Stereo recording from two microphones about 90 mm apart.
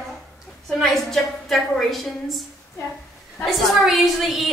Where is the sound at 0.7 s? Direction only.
5° left (ahead or behind).